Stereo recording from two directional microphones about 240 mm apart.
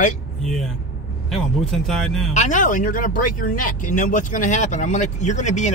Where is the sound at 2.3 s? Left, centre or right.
Left.